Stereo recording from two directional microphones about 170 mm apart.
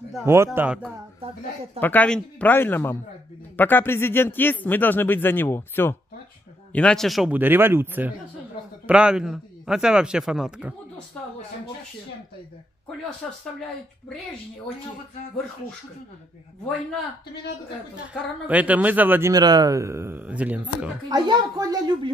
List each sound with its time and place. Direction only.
0.2 s a man's voice: 15° right (ahead or behind)
1.2 s a woman's voice: 35° right (ahead or behind)
1.8 s a man's voice: 10° left (ahead or behind)
7.3 s a man's voice: 10° right (ahead or behind)
13.2 s a man's voice: 5° left (ahead or behind)
18.5 s a man's voice: 10° right (ahead or behind)
21.1 s a woman's voice: 20° right (ahead or behind)